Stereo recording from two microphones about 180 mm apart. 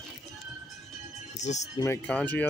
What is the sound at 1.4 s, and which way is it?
Music, 40° left (ahead or behind).